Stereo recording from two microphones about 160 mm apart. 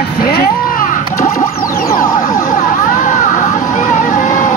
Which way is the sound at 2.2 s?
60° left (ahead or behind).